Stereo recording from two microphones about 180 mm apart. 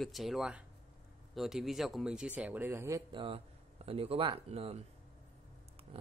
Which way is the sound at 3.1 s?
30° right (ahead or behind).